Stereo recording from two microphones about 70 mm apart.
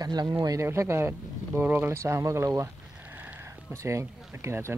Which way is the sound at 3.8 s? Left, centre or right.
Right.